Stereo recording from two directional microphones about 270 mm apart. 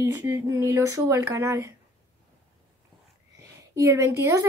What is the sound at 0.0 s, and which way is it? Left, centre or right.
A woman's voice, centre.